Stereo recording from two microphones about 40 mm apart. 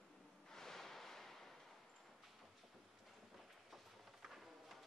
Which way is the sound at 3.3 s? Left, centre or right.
Centre.